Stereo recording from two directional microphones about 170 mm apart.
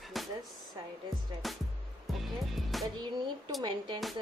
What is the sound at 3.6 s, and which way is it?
Speech, 30° right (ahead or behind).